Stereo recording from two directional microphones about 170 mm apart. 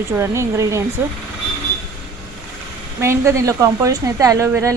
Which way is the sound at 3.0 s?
15° right (ahead or behind).